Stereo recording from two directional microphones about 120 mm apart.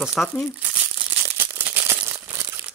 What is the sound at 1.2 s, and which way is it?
Crumpling, 20° right (ahead or behind).